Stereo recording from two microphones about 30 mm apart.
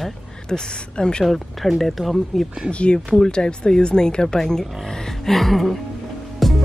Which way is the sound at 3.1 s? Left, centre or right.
Left.